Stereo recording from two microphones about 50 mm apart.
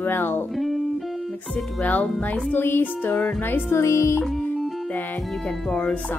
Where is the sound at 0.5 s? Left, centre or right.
Centre.